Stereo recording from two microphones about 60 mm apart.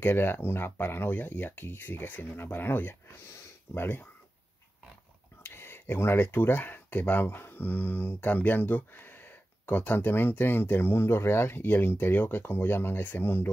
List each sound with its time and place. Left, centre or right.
0.0 s speech: left
5.4 s speech: left